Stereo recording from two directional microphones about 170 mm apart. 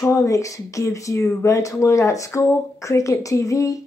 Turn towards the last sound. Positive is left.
turn(degrees=20)  # may be behind; listen again after turning